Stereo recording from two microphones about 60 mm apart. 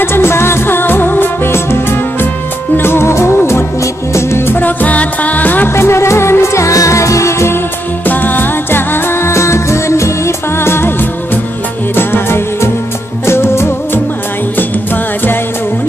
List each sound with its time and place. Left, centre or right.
0.0 s music: left
4.6 s music: left
5.7 s music: left
8.0 s music: left